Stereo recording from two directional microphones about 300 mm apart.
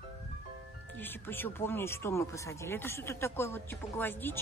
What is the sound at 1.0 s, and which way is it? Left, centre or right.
Speech, centre.